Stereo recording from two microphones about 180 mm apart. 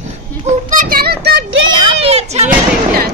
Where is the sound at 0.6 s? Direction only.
50° right (ahead or behind); by 1.7 s 75° right (ahead or behind).